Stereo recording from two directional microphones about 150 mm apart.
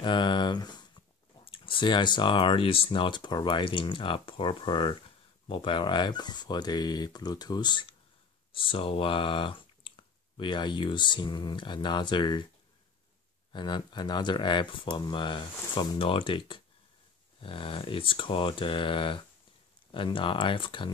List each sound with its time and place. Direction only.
0.0 s speech: 30° left (ahead or behind)
13.5 s speech: 30° left (ahead or behind)